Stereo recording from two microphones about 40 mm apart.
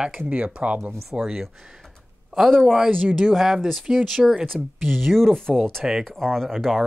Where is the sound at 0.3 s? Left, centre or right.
Right.